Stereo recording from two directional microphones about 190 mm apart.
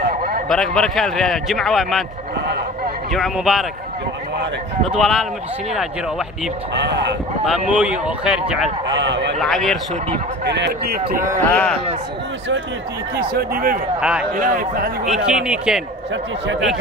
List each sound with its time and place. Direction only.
0.0 s a sound: 50° right (ahead or behind)
0.5 s a man's voice: centre (ahead or behind)
3.1 s a man's voice: centre (ahead or behind)
4.8 s a man's voice: centre (ahead or behind)
6.7 s speech: 65° right (ahead or behind)
7.7 s a man's voice: 5° right (ahead or behind)
8.9 s speech: 70° right (ahead or behind)
9.4 s a man's voice: centre (ahead or behind)
10.4 s a man's voice: 65° right (ahead or behind)
11.4 s a man's voice: 5° left (ahead or behind)
13.1 s speech: 55° right (ahead or behind)
13.9 s a man's voice: 5° right (ahead or behind)
14.3 s speech: 45° right (ahead or behind)
15.0 s a man's voice: 5° right (ahead or behind)